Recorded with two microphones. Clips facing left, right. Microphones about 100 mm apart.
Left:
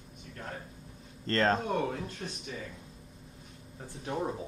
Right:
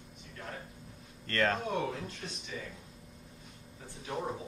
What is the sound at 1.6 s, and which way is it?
Speech, 45° left (ahead or behind).